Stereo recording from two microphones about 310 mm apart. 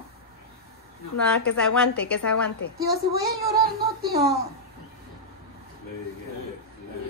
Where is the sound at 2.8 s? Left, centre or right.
Right.